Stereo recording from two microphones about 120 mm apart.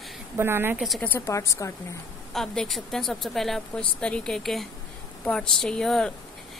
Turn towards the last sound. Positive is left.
turn(degrees=5)  # may be behind; listen again after turning